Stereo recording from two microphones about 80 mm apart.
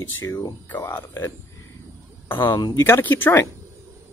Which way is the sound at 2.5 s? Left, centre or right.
Left.